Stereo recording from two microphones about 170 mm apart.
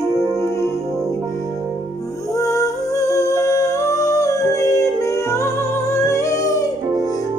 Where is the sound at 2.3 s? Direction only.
20° left (ahead or behind).